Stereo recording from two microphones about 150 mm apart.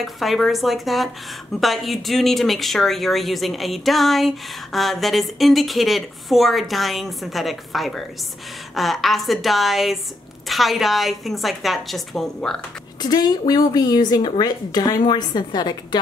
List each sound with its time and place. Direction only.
0.0 s speech: centre (ahead or behind)
13.0 s a woman's voice: 25° left (ahead or behind)